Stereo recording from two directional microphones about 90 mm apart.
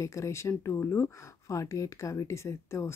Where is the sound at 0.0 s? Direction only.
35° left (ahead or behind).